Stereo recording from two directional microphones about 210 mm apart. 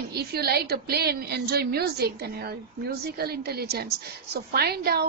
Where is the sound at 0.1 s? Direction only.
50° right (ahead or behind).